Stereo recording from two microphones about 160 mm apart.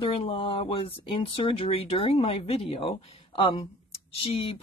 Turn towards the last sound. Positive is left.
turn(degrees=40)  # may be behind; listen again after turning